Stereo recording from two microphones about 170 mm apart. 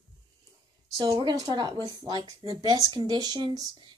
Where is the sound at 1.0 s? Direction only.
25° right (ahead or behind).